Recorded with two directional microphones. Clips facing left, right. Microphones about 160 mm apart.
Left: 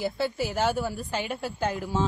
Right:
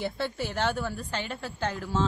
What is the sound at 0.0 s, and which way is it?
A woman's voice, 5° left (ahead or behind).